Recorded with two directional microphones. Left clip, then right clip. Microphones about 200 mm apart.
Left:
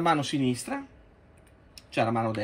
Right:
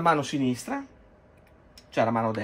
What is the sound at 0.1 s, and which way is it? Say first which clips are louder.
Speech: right 1 dB; 20° right (ahead or behind).